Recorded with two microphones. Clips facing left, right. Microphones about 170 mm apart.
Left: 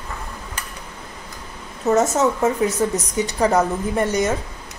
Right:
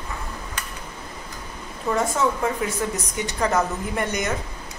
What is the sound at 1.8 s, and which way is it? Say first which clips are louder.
A woman's voice: left 5 dB; 45° left (ahead or behind).